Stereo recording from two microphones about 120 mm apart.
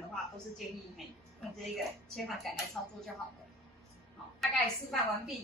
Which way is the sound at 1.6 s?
Centre (ahead or behind).